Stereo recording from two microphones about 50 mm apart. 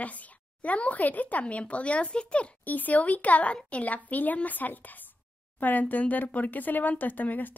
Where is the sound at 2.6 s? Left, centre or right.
Left.